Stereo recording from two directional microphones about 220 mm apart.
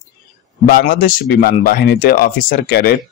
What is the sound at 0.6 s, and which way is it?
A man's voice, 40° left (ahead or behind).